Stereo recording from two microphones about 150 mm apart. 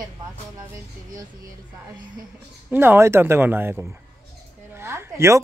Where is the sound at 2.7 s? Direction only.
15° right (ahead or behind).